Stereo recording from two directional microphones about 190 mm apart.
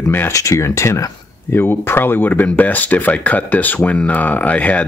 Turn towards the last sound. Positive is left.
turn(degrees=5)  # may be behind; listen again after turning